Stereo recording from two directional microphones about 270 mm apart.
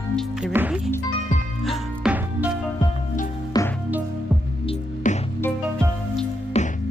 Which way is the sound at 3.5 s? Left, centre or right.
Centre.